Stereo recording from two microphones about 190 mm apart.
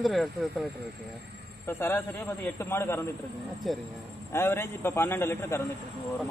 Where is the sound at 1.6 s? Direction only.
10° left (ahead or behind).